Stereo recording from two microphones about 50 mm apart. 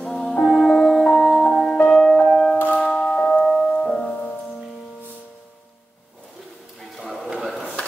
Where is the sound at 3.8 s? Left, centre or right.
Centre.